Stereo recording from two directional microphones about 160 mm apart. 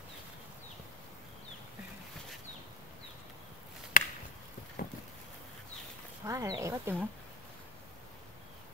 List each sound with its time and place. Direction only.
3.9 s chop: 60° left (ahead or behind)
4.8 s a sound: 55° left (ahead or behind)
6.2 s speech: 20° right (ahead or behind)